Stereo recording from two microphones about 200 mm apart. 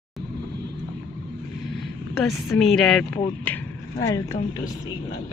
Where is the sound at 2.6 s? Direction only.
Centre (ahead or behind).